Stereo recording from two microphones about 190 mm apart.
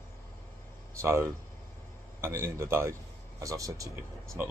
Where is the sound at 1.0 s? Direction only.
15° right (ahead or behind).